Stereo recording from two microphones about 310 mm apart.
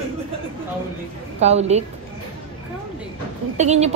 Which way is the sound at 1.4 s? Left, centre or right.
Right.